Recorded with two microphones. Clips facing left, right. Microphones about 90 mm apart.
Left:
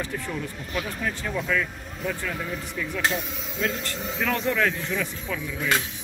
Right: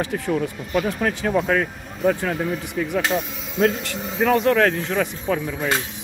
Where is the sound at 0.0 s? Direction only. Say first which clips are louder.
Right 8 dB; 75° right (ahead or behind).